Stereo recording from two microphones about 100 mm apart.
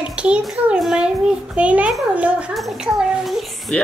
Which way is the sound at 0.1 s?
10° right (ahead or behind).